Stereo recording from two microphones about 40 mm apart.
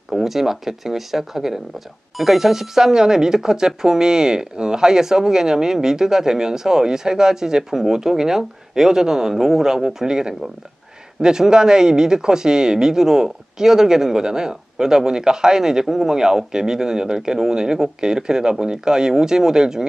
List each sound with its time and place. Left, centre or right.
0.1 s speech: centre